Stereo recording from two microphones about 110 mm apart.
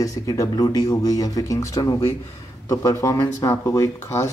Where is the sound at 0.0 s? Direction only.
30° left (ahead or behind).